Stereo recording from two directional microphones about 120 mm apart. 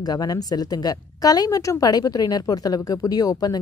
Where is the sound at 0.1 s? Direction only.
30° left (ahead or behind).